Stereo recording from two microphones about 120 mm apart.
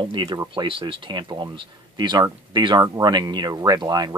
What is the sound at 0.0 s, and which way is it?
Speech, 40° right (ahead or behind).